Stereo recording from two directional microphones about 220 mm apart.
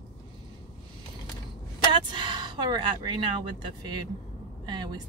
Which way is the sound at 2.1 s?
20° right (ahead or behind).